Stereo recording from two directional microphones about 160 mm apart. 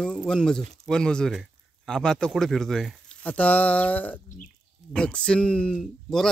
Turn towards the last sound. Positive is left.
turn(degrees=0)  # may be behind; listen again after turning